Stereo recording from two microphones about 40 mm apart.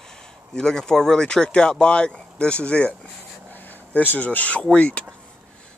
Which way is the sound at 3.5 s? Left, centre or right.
Left.